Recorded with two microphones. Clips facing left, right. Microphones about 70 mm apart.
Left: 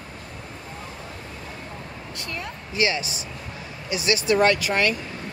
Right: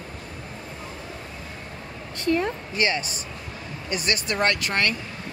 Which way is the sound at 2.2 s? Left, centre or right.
Right.